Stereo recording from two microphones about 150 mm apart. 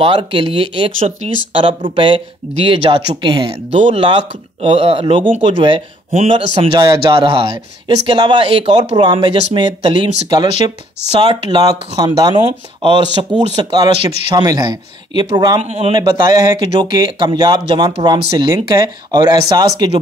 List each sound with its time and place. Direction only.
0.0 s speech: 35° right (ahead or behind)
3.7 s a man's voice: 50° right (ahead or behind)
4.0 s a man's voice: 35° right (ahead or behind)
15.6 s a man's voice: 45° right (ahead or behind)
15.9 s a man's voice: 25° right (ahead or behind)